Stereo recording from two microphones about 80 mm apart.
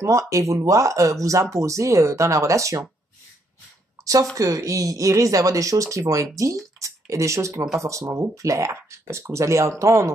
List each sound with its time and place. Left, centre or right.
0.0 s speech: right
4.0 s a sound: right
4.4 s speech: right